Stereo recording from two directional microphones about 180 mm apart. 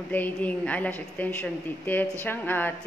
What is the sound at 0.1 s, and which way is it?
A woman's voice, 10° left (ahead or behind).